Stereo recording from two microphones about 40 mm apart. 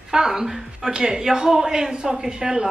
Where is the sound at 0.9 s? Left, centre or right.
Centre.